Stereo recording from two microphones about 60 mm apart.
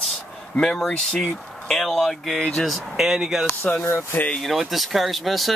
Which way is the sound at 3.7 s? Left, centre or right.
Left.